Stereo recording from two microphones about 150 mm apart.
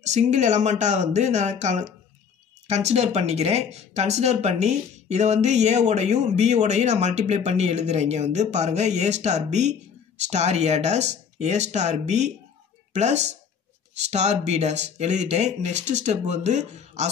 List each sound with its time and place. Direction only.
0.0 s speech: 50° right (ahead or behind)